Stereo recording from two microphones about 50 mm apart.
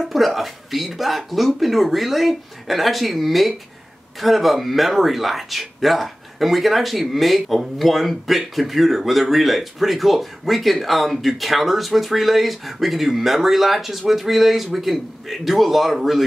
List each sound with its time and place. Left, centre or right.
0.0 s speech: centre